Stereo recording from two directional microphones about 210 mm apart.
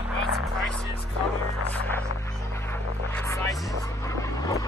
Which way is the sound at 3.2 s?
15° left (ahead or behind).